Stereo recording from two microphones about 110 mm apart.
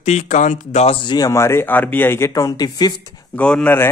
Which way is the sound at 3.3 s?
10° left (ahead or behind).